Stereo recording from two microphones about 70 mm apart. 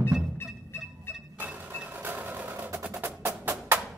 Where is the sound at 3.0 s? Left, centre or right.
Right.